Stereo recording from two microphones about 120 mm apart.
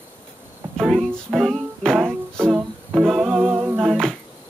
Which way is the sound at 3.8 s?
5° left (ahead or behind).